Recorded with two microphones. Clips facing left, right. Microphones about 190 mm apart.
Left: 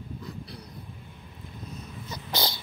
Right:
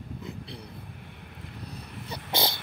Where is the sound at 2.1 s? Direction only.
25° right (ahead or behind).